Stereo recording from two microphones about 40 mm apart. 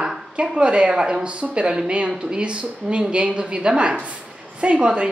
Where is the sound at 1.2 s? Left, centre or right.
Right.